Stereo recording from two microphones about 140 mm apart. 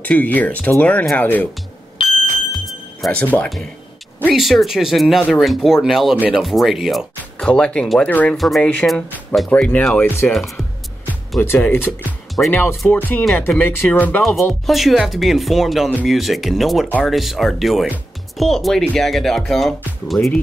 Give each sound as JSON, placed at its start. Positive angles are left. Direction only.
{"t": 0.0, "sound": "speech", "side_deg": 10}
{"t": 2.0, "sound": "bicycle bell", "side_deg": 0}
{"t": 4.3, "sound": "speech", "side_deg": 0}
{"t": 11.4, "sound": "speech", "side_deg": 15}
{"t": 14.7, "sound": "speech", "side_deg": 0}